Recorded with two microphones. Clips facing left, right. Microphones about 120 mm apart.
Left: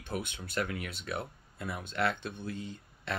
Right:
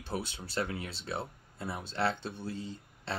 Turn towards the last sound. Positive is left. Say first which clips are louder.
# even
turn(degrees=-30)  # may be behind; listen again after turning